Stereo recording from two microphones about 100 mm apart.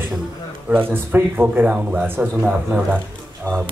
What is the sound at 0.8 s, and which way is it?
A man's voice, 20° right (ahead or behind).